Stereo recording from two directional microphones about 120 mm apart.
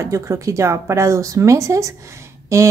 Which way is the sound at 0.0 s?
25° right (ahead or behind).